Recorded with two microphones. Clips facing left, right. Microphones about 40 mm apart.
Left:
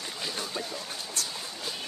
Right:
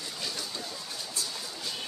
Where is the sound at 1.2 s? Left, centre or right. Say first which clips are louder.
Left 1 dB; left.